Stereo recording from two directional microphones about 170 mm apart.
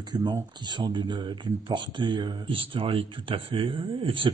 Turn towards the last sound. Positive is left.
turn(degrees=-30)  # may be behind; listen again after turning